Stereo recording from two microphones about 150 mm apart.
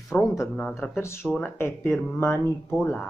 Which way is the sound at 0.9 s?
15° left (ahead or behind).